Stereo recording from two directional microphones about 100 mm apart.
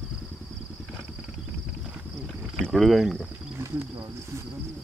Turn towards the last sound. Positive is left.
turn(degrees=-25)  # may be behind; listen again after turning